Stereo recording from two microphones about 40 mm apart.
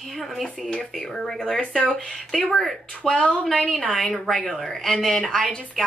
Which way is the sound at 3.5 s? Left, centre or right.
Centre.